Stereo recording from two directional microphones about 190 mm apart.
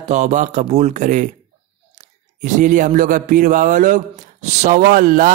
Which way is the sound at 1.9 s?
40° right (ahead or behind).